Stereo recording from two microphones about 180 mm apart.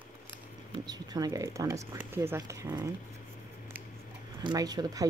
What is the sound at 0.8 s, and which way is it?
Speech, 20° right (ahead or behind).